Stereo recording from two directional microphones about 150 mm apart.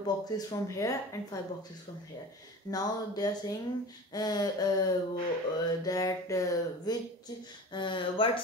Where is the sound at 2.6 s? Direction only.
25° left (ahead or behind).